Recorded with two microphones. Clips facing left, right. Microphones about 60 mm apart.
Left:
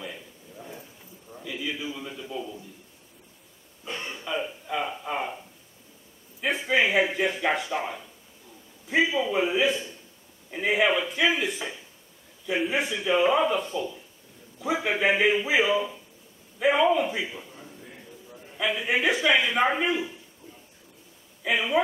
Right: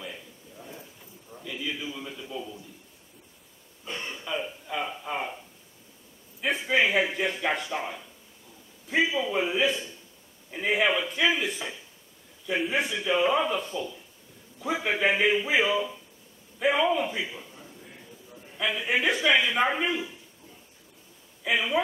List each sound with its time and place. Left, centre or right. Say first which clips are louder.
0.0 s a sound: left 1 dB; centre
3.9 s a sound: left 1 dB; centre
4.2 s a sound: left 3 dB; centre
6.4 s a sound: left 1 dB; centre
7.7 s a man's voice: left 2 dB; centre
8.8 s a man's voice: left 2 dB; centre
9.3 s a man's voice: left 2 dB; centre
9.7 s a man's voice: left 2 dB; left
10.5 s a man's voice: left 2 dB; centre
19.1 s speech: left 1 dB; left
19.5 s a man's voice: left 2 dB; centre
21.5 s a man's voice: left 2 dB; centre